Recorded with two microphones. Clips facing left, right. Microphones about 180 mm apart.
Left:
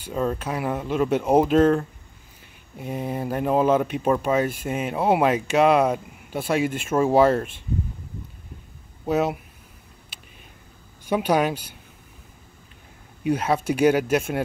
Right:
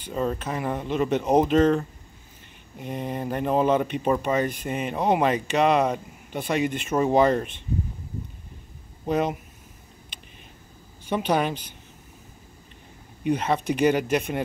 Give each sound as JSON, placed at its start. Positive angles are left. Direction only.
{"t": 0.4, "sound": "speech", "side_deg": 5}
{"t": 9.0, "sound": "speech", "side_deg": 5}
{"t": 11.1, "sound": "speech", "side_deg": 10}
{"t": 13.2, "sound": "speech", "side_deg": 10}